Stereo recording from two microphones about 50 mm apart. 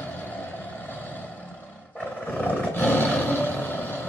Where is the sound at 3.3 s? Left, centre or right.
Left.